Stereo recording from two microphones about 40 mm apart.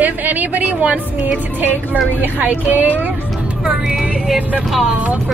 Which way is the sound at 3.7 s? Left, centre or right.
Right.